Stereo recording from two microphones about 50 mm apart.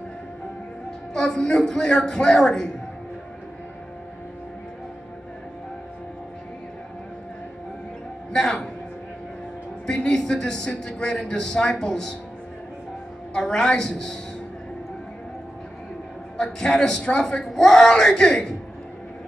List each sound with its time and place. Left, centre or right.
1.1 s a man's voice: centre
8.3 s a man's voice: centre
9.8 s a sound: centre
11.2 s a man's voice: centre
13.3 s a man's voice: centre
16.3 s a man's voice: centre